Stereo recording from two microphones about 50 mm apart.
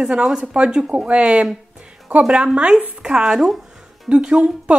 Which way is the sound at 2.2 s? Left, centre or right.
Centre.